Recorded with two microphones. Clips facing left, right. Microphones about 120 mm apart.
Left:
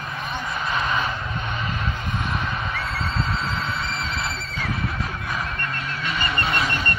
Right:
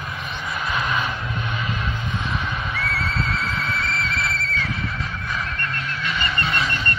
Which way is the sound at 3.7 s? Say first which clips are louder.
Right 2 dB; 25° left (ahead or behind).